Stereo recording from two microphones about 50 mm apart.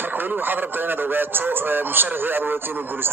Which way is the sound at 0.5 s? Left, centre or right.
Right.